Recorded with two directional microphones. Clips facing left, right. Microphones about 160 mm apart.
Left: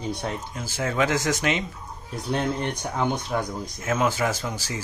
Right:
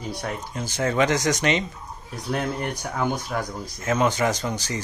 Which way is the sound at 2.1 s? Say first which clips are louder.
Left 1 dB; 25° left (ahead or behind).